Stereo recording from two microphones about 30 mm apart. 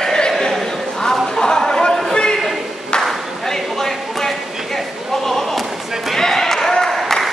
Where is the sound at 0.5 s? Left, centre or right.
Centre; by 3.1 s left.